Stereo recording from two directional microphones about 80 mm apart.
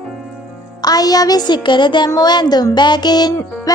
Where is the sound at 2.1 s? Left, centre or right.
Left.